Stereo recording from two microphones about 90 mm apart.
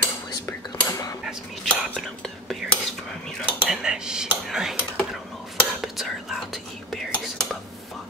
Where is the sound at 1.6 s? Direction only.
Centre (ahead or behind).